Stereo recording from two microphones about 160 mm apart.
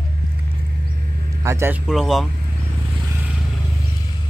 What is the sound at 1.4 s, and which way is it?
Speech, 15° right (ahead or behind).